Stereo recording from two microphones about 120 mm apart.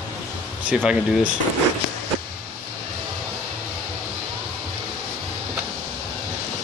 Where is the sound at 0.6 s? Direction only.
10° right (ahead or behind).